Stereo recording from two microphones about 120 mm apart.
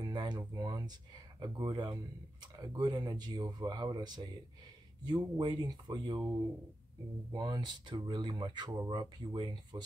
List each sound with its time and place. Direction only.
0.0 s speech: 40° right (ahead or behind)
7.3 s speech: 35° right (ahead or behind)